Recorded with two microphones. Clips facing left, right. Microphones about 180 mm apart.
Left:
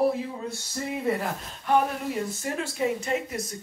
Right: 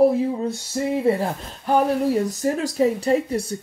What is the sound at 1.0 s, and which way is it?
Speech, 30° right (ahead or behind).